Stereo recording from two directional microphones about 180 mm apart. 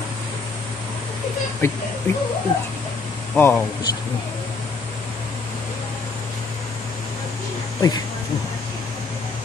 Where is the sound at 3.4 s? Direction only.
10° left (ahead or behind).